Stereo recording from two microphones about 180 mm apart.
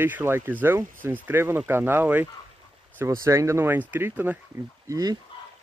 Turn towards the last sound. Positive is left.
turn(degrees=-20)  # may be behind; listen again after turning